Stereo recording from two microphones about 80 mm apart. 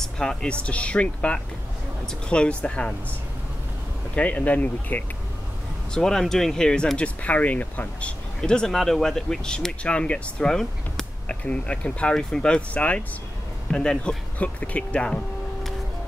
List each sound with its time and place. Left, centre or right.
0.0 s speech: centre
4.1 s speech: centre
5.9 s speech: centre
8.4 s speech: centre